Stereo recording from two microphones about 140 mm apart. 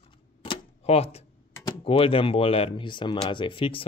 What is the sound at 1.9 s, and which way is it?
Speech, 40° left (ahead or behind).